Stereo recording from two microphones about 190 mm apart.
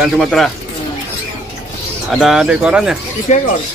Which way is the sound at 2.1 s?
5° right (ahead or behind).